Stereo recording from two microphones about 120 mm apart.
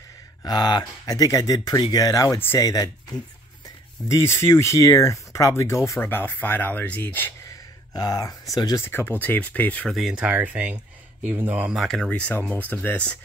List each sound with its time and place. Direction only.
0.4 s speech: 35° left (ahead or behind); by 2.7 s 20° left (ahead or behind)
2.7 s speech: 30° left (ahead or behind)
7.9 s speech: 30° left (ahead or behind)
8.8 s speech: 15° left (ahead or behind)
9.8 s speech: centre (ahead or behind)